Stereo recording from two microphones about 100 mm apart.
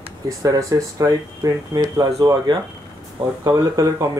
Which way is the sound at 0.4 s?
35° right (ahead or behind).